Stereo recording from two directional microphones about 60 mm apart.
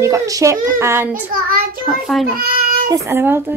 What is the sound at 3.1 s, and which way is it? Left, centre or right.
Speech, right.